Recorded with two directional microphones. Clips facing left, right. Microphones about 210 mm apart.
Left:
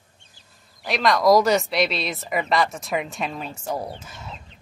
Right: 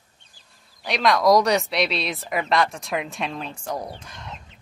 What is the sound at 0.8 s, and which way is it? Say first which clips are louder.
Speech: even; centre (ahead or behind).